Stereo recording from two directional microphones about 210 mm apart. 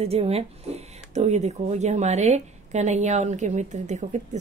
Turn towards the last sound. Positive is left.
turn(degrees=-35)  # may be behind; listen again after turning